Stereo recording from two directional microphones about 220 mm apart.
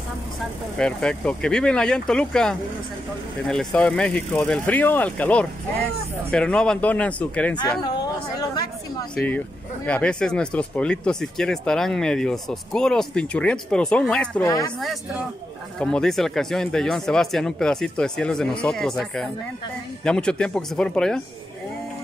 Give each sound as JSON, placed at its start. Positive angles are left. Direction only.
{"t": 0.7, "sound": "speech", "side_deg": 5}
{"t": 7.8, "sound": "speech", "side_deg": 20}
{"t": 9.1, "sound": "speech", "side_deg": 5}
{"t": 14.8, "sound": "speech", "side_deg": 0}